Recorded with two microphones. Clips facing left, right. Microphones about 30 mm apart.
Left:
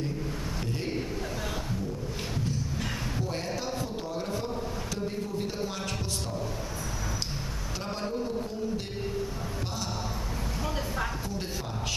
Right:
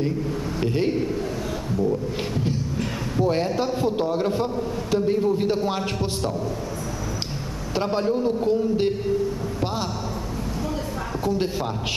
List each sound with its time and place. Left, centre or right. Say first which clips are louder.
3.5 s a man's voice: right 10 dB; right
4.9 s a sound: right 15 dB; right
7.7 s a man's voice: right 11 dB; right